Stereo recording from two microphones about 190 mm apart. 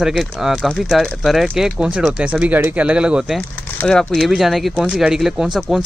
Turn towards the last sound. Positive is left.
turn(degrees=0)  # may be behind; listen again after turning